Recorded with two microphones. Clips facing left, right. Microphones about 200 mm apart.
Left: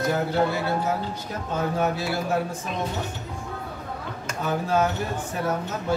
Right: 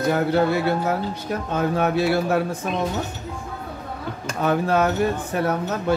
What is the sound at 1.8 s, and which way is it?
Speech, 65° right (ahead or behind).